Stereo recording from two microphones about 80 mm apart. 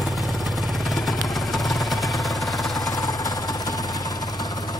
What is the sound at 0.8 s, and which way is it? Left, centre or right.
Vehicle, centre.